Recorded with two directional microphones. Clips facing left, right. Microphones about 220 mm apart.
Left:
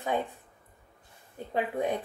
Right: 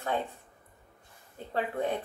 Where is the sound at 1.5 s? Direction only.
15° left (ahead or behind).